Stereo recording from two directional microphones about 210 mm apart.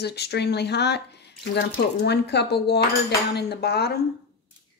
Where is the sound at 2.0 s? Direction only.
50° left (ahead or behind).